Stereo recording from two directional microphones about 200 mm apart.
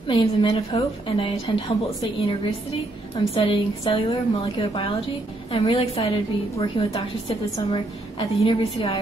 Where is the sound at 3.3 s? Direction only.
25° left (ahead or behind).